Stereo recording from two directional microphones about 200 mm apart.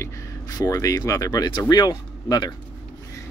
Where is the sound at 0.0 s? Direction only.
20° left (ahead or behind).